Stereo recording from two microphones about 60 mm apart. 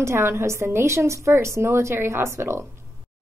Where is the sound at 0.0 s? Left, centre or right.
Right.